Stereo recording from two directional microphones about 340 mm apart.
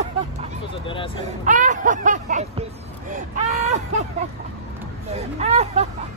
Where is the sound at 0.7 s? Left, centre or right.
Centre.